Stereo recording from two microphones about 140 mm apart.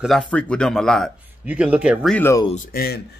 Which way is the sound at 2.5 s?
90° left.